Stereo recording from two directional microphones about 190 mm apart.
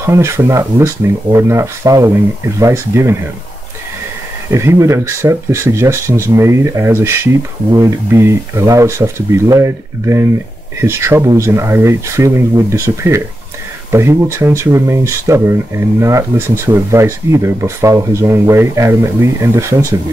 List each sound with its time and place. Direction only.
0.0 s speech: 15° right (ahead or behind)
4.5 s speech: 15° right (ahead or behind)